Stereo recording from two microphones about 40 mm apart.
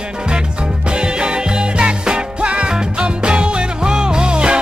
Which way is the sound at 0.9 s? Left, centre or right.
Right.